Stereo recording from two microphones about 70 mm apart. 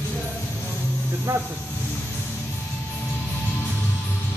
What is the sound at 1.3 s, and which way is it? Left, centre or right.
Speech, right.